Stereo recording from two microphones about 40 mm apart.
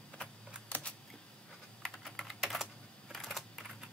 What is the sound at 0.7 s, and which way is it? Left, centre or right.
Camera, left.